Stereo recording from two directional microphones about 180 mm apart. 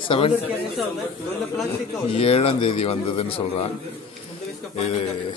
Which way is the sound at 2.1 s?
30° left (ahead or behind).